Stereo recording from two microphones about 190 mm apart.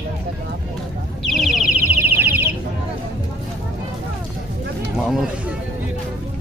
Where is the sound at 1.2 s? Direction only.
Centre (ahead or behind).